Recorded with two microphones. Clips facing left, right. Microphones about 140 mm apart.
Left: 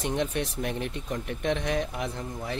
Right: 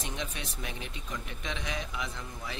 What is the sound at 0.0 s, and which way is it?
Speech, 60° left (ahead or behind).